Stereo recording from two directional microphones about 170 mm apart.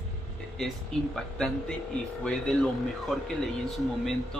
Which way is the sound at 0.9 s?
5° left (ahead or behind).